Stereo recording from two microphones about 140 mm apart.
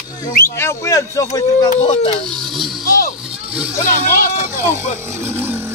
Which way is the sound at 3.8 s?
80° left.